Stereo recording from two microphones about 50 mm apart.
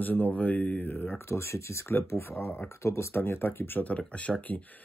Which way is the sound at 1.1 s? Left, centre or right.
Left.